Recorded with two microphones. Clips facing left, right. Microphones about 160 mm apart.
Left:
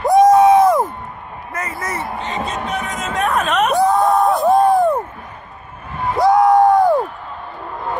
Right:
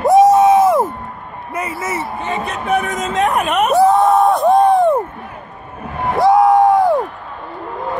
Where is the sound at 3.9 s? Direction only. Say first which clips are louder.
Right 3 dB; centre (ahead or behind).